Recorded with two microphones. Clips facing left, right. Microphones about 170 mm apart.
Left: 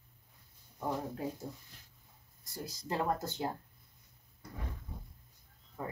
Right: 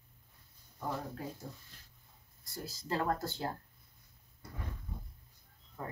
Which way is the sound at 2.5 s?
15° left (ahead or behind).